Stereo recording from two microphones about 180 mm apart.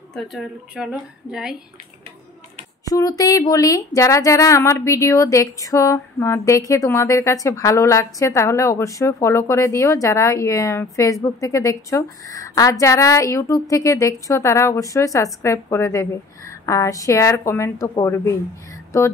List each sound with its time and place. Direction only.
0.1 s a woman's voice: centre (ahead or behind)
2.8 s a woman's voice: 20° left (ahead or behind)